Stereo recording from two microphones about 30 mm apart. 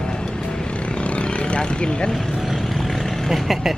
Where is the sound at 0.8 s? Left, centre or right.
Left.